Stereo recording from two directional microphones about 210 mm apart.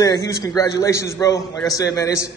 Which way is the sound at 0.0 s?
15° left (ahead or behind).